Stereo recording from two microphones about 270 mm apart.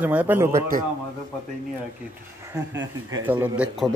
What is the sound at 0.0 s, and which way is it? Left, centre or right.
Speech, centre.